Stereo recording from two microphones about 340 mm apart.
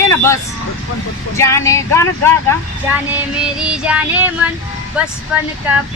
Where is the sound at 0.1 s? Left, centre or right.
Centre.